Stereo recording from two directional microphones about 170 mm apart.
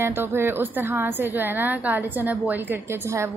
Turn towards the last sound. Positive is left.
turn(degrees=-15)  # may be behind; listen again after turning